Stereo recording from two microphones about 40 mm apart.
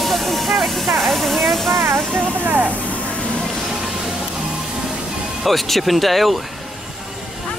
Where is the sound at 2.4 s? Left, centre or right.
Right.